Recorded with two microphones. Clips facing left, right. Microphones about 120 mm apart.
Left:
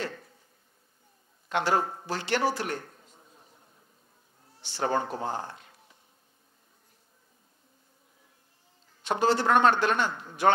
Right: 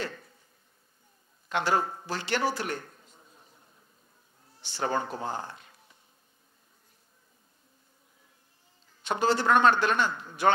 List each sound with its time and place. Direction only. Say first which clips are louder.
0.0 s a sound: left 1 dB; 35° left (ahead or behind)
1.6 s speech: left 1 dB; 35° left (ahead or behind)
2.1 s speech: left 2 dB; 45° left (ahead or behind)
3.0 s a sound: left 1 dB; 25° left (ahead or behind)
4.6 s speech: left 2 dB; 30° left (ahead or behind)
9.0 s a man's voice: left 1 dB; 50° left (ahead or behind)
9.9 s speech: right 1 dB; 30° left (ahead or behind)